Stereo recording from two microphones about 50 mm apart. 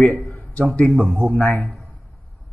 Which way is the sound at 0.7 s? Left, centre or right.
Centre.